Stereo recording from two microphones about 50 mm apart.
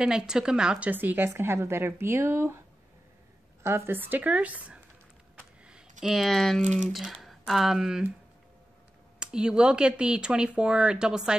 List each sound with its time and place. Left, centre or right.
0.0 s speech: centre
0.9 s speech: right
1.3 s a woman's voice: right
3.6 s a woman's voice: right
3.9 s speech: right
4.2 s speech: right
5.7 s a sound: centre
6.1 s speech: centre
7.0 s speech: centre
9.2 s speech: centre